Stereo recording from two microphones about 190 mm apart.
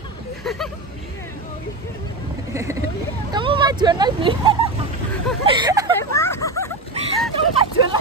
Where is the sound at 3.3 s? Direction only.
25° right (ahead or behind).